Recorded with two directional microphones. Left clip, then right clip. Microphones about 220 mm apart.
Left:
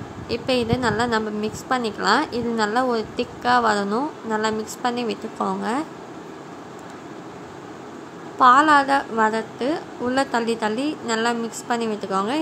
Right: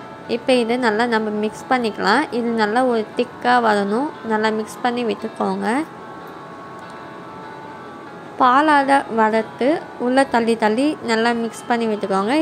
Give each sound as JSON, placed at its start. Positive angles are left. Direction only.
{"t": 0.3, "sound": "a woman's voice", "side_deg": -15}
{"t": 8.4, "sound": "a woman's voice", "side_deg": -15}